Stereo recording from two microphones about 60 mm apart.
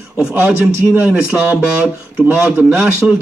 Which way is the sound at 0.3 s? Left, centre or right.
Right.